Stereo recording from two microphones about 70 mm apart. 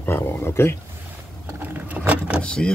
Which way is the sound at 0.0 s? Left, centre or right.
Left.